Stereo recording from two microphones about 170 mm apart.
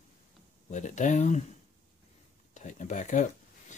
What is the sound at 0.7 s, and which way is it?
Speech, 45° left (ahead or behind).